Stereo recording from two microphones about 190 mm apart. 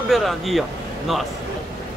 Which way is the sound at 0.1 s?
Centre (ahead or behind).